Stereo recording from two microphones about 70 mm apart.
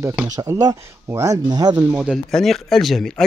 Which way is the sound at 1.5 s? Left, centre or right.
Right.